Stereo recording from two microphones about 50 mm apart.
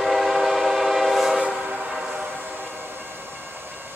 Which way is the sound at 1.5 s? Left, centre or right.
Centre.